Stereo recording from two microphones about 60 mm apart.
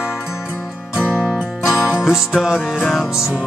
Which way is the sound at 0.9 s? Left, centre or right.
Centre.